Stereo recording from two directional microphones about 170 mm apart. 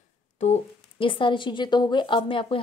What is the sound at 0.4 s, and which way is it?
Speech, 35° left (ahead or behind).